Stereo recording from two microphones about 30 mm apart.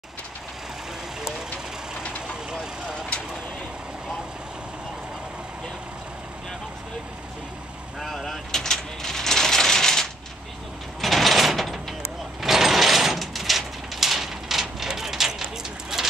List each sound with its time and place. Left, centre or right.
8.0 s vehicle: centre
8.5 s coin: centre
11.0 s mechanisms: centre
13.2 s a sound: centre
15.9 s vehicle: centre